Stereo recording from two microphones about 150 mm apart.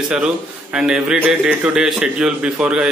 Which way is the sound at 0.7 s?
5° right (ahead or behind).